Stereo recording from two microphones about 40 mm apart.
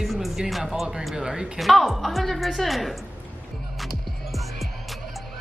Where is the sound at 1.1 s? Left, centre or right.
Right.